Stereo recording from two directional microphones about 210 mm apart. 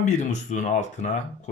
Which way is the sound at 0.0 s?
35° left (ahead or behind).